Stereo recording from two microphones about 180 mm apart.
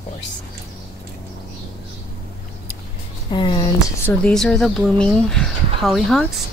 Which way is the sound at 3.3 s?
25° left (ahead or behind).